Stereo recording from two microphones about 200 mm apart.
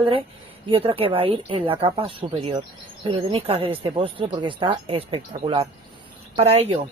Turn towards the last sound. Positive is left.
turn(degrees=-30)  # may be behind; listen again after turning